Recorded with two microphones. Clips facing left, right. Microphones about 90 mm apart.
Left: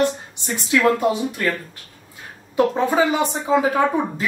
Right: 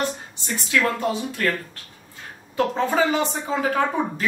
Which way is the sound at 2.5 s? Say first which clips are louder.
Left 4 dB; 15° left (ahead or behind).